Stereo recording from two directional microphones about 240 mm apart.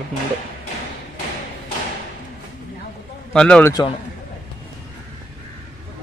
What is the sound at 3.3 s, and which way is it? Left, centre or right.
Speech, centre.